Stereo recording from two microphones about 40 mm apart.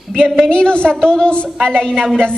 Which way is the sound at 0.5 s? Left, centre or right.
Left.